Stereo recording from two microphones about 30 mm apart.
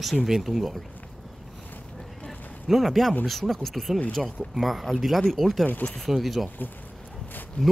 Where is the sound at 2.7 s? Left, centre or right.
Centre.